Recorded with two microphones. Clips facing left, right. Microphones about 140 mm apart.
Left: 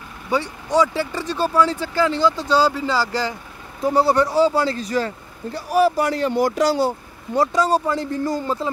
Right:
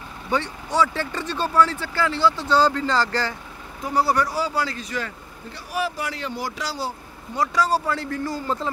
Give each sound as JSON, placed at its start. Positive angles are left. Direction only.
{"t": 0.3, "sound": "speech", "side_deg": 15}
{"t": 3.8, "sound": "speech", "side_deg": 25}
{"t": 7.3, "sound": "speech", "side_deg": 25}